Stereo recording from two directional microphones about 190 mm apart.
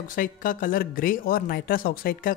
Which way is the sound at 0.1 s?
45° left (ahead or behind).